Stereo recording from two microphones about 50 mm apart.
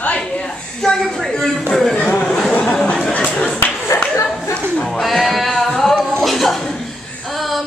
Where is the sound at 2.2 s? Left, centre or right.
Centre.